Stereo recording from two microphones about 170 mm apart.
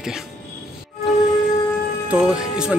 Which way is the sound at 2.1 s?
5° right (ahead or behind).